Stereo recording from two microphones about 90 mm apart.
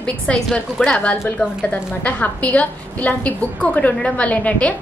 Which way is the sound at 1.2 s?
20° left (ahead or behind).